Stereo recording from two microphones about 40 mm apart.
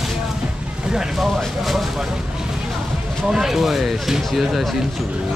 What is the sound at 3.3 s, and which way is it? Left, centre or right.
Speech, centre.